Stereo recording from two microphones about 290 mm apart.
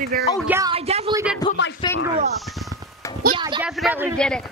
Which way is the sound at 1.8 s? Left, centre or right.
Centre.